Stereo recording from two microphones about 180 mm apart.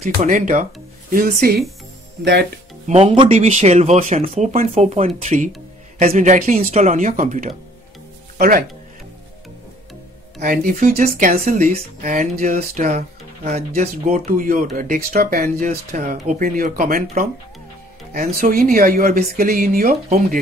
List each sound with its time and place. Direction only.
0.2 s speech: 45° right (ahead or behind)
2.9 s speech: 35° right (ahead or behind)
8.4 s speech: 55° right (ahead or behind)
10.4 s speech: 50° right (ahead or behind)
18.3 s speech: 55° right (ahead or behind)
19.9 s speech: 40° right (ahead or behind)